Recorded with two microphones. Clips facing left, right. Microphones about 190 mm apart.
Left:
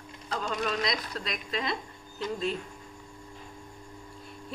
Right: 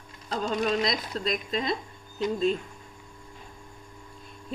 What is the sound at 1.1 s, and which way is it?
Speech, 20° right (ahead or behind).